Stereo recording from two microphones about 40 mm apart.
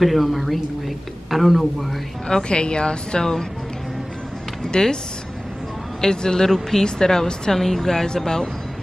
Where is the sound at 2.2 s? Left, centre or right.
Centre.